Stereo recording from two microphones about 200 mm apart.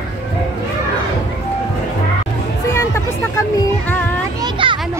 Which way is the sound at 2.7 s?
15° left (ahead or behind).